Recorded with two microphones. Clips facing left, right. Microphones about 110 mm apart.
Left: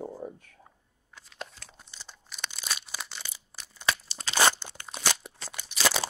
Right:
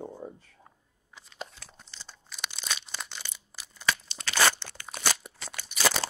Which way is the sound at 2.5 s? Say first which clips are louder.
Even; 5° left (ahead or behind).